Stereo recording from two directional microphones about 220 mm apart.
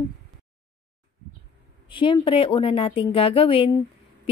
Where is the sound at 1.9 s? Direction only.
20° left (ahead or behind).